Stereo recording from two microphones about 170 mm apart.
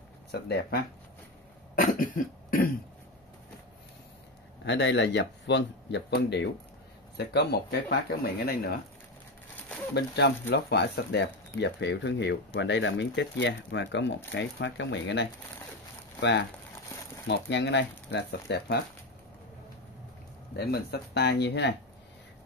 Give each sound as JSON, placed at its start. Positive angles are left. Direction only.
{"t": 0.3, "sound": "speech", "side_deg": 70}
{"t": 1.8, "sound": "cough", "side_deg": 55}
{"t": 4.6, "sound": "speech", "side_deg": 90}
{"t": 9.9, "sound": "speech", "side_deg": 80}
{"t": 20.5, "sound": "speech", "side_deg": 70}